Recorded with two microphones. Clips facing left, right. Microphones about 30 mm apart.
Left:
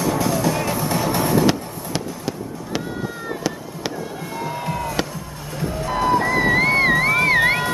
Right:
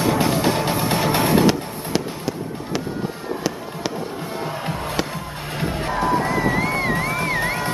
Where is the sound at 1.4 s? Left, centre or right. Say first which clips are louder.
Right 1 dB; centre.